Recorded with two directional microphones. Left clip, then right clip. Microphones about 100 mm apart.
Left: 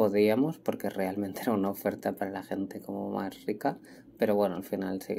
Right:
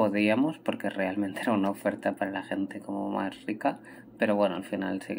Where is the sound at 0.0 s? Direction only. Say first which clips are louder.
Even; 40° left (ahead or behind).